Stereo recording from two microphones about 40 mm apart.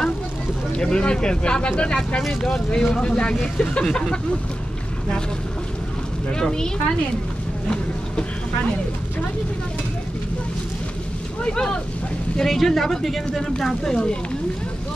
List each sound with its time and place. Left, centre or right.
0.7 s speech: left
6.3 s speech: centre
11.4 s speech: centre
12.4 s speech: centre